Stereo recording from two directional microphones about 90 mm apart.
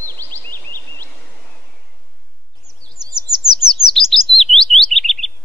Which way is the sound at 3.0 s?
50° right (ahead or behind).